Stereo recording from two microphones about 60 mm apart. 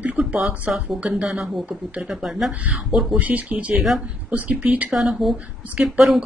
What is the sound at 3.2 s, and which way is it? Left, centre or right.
Speech, right.